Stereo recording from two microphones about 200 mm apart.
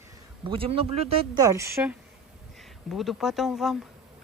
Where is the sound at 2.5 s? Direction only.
Centre (ahead or behind).